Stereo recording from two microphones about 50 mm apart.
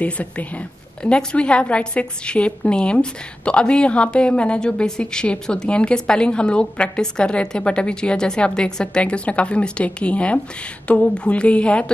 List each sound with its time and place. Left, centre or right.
0.0 s a woman's voice: left